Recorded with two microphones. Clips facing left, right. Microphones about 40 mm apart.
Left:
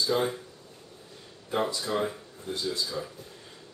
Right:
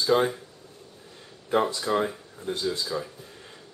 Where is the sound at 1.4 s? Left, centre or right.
Right.